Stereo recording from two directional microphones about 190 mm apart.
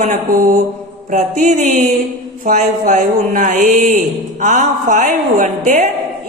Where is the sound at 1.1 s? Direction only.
40° right (ahead or behind).